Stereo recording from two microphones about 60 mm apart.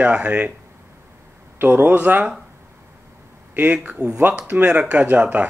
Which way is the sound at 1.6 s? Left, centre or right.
Right.